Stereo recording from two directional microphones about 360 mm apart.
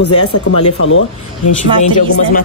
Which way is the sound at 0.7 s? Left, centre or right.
Left.